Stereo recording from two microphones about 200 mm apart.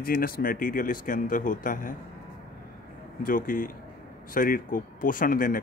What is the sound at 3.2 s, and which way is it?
Speech, 45° left (ahead or behind).